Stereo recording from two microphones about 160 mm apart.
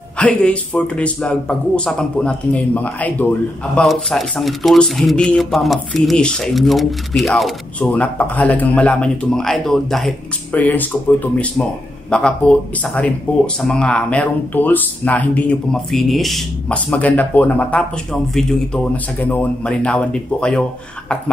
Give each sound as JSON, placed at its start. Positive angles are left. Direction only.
{"t": 0.2, "sound": "speech", "side_deg": 5}